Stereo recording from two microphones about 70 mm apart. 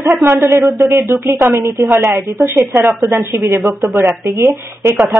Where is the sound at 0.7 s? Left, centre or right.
Right.